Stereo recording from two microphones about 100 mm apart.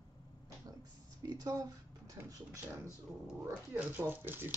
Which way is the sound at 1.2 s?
40° right (ahead or behind).